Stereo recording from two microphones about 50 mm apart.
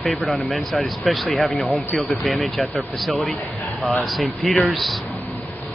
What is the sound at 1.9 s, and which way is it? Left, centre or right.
Speech, left.